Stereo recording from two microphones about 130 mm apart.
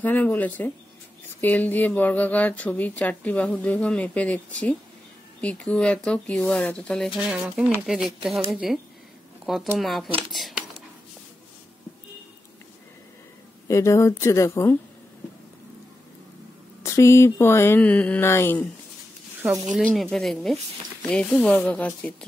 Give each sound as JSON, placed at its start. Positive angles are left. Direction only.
{"t": 0.0, "sound": "a woman's voice", "side_deg": 15}
{"t": 7.2, "sound": "speech", "side_deg": -5}
{"t": 9.8, "sound": "speech", "side_deg": 0}
{"t": 13.7, "sound": "a sound", "side_deg": 25}
{"t": 16.8, "sound": "a sound", "side_deg": 20}
{"t": 18.3, "sound": "a woman's voice", "side_deg": 15}
{"t": 20.0, "sound": "a woman's voice", "side_deg": 0}